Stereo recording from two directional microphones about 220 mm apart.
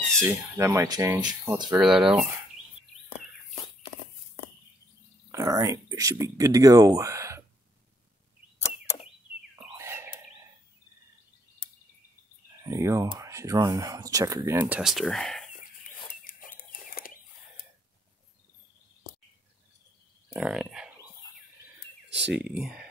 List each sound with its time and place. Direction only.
0.2 s speech: 15° right (ahead or behind)
1.8 s speech: centre (ahead or behind)
5.3 s speech: 15° right (ahead or behind)
9.6 s whispering: 10° right (ahead or behind)
12.6 s speech: 15° right (ahead or behind); by 15.4 s centre (ahead or behind)
16.1 s chicken: 40° left (ahead or behind)
20.3 s speech: 5° right (ahead or behind)
22.3 s speech: 5° right (ahead or behind)